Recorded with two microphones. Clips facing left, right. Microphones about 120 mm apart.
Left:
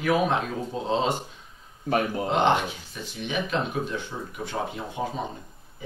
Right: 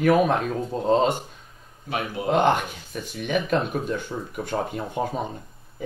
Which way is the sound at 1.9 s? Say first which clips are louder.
Left 4 dB; 45° left (ahead or behind).